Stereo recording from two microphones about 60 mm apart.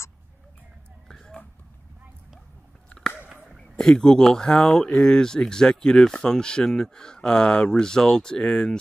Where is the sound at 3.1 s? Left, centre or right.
Right.